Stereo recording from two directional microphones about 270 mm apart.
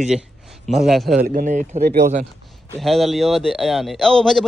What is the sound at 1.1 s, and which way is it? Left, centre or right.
Speech, right.